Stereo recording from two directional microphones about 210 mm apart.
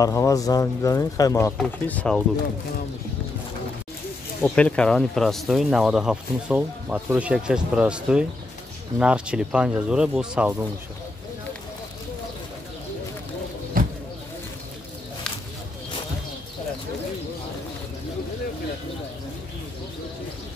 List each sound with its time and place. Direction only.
0.0 s speech: 15° left (ahead or behind)
1.6 s speech: 5° left (ahead or behind)
4.4 s speech: 5° left (ahead or behind)
13.7 s a sound: 40° right (ahead or behind)